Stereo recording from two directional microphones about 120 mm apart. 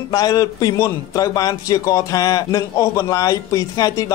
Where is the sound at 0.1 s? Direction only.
30° left (ahead or behind).